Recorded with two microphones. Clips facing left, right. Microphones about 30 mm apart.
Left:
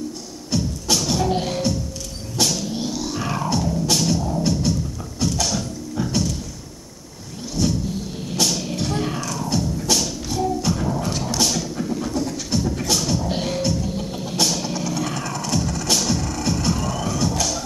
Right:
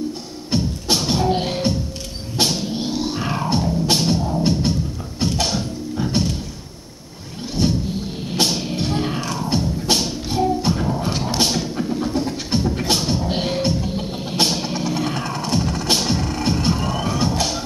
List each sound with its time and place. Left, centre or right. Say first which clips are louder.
0.5 s music: right 2 dB; right
7.5 s vehicle: right 2 dB; right
8.3 s music: right 2 dB; right